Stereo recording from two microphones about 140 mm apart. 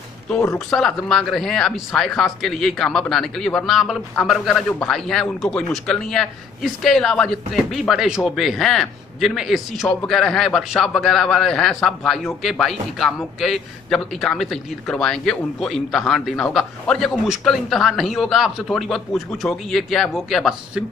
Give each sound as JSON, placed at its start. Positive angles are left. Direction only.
{"t": 0.3, "sound": "speech", "side_deg": 20}
{"t": 0.7, "sound": "a man's voice", "side_deg": 5}